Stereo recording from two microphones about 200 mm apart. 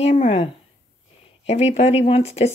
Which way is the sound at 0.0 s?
30° left (ahead or behind).